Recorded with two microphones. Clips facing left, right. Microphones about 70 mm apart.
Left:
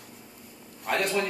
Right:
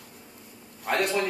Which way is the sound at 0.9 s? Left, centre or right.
Centre.